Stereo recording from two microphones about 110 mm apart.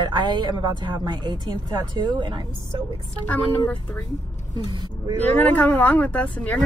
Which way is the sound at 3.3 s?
15° left (ahead or behind).